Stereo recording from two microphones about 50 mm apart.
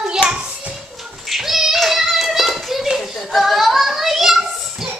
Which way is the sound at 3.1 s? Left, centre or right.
Centre.